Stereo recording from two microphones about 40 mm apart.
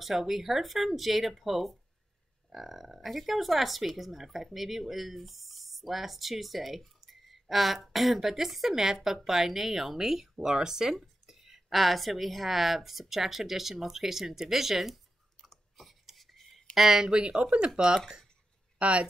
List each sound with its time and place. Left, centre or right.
0.0 s a woman's voice: centre
15.5 s whispering: centre
16.7 s a woman's voice: centre
17.4 s speech: right
17.7 s speech: right
18.8 s speech: right